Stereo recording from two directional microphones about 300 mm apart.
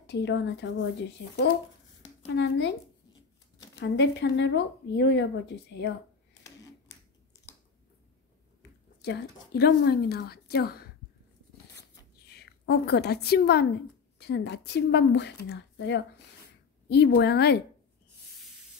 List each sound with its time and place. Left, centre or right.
0.0 s speech: left
2.3 s speech: left
3.2 s a sound: centre
3.8 s speech: left
9.0 s speech: left
12.4 s a woman's voice: left